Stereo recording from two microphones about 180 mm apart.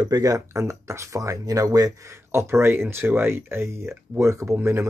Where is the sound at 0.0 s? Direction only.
20° right (ahead or behind).